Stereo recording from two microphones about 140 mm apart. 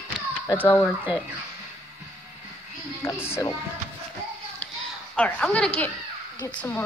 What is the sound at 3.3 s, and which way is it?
Speech, 20° left (ahead or behind).